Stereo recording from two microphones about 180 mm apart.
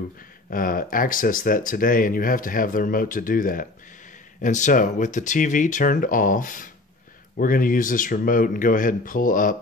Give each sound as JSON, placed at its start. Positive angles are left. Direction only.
{"t": 0.5, "sound": "speech", "side_deg": 50}